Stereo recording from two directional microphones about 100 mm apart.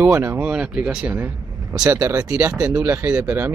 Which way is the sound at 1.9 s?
25° right (ahead or behind).